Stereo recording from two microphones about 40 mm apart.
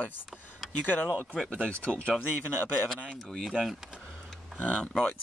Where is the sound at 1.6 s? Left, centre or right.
Left.